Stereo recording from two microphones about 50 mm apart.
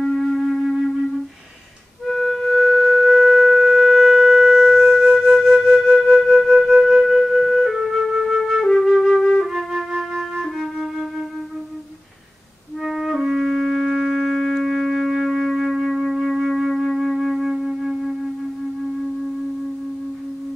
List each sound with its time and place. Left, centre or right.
0.0 s music: centre
2.0 s music: centre
5.0 s flute: centre
9.4 s flute: centre
12.8 s music: centre